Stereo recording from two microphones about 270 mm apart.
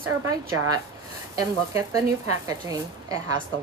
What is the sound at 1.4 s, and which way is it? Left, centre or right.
A woman's voice, centre.